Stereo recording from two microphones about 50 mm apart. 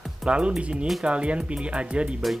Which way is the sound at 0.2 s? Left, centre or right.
Centre.